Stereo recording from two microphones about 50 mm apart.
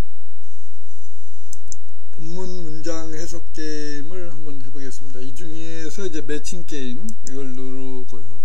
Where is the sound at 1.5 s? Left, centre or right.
Left.